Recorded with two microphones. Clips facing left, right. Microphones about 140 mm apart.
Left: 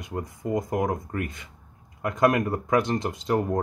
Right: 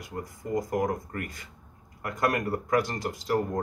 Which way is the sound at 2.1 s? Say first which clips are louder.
Left 5 dB; 20° left (ahead or behind).